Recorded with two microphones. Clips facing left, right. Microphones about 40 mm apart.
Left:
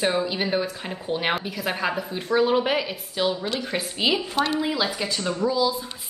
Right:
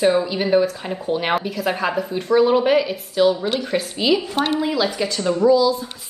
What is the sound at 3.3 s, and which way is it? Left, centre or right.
Speech, right.